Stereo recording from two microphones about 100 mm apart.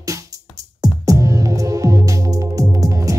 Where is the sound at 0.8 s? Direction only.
35° right (ahead or behind).